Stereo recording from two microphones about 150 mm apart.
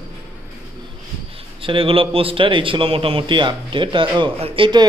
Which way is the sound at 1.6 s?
35° right (ahead or behind).